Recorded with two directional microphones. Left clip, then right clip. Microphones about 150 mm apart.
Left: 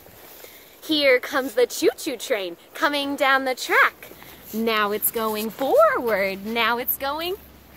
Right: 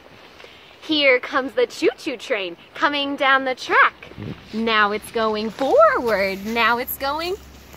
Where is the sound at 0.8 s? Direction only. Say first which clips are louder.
Right 2 dB; 10° left (ahead or behind).